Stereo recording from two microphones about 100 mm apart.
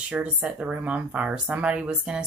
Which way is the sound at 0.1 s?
10° right (ahead or behind).